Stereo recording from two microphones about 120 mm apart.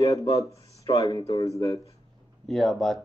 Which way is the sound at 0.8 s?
30° left (ahead or behind).